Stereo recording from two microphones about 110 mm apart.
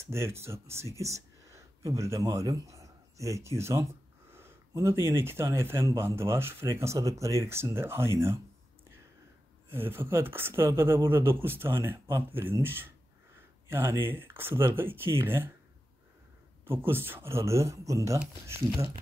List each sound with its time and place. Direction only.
0.0 s speech: 25° right (ahead or behind)
9.7 s speech: 20° right (ahead or behind)
16.6 s speech: 20° right (ahead or behind)